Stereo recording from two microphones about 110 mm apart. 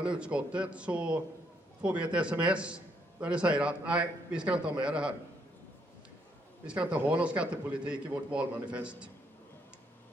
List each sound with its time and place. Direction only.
0.0 s a man's voice: 10° right (ahead or behind)
6.6 s a man's voice: 10° right (ahead or behind)